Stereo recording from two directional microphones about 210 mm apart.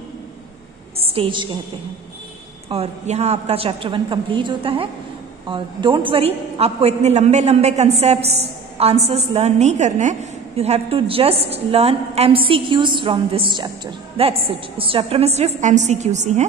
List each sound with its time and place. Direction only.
0.9 s a woman's voice: 25° right (ahead or behind)
2.7 s a woman's voice: 30° right (ahead or behind)